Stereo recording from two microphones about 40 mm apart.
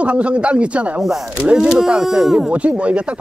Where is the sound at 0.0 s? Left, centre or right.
Right.